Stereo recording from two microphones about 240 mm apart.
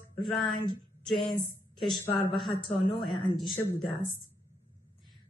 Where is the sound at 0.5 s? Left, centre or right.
Centre.